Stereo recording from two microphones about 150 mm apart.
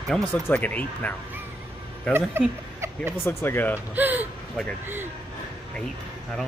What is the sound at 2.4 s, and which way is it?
Speech, 15° right (ahead or behind).